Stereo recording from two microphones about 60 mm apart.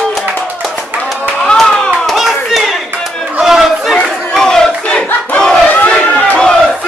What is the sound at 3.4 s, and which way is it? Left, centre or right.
Crowd, centre.